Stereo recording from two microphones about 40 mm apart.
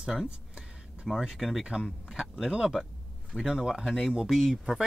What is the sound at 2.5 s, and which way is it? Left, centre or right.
Speech, centre.